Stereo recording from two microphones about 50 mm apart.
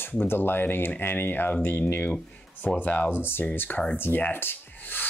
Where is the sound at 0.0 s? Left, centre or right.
Left.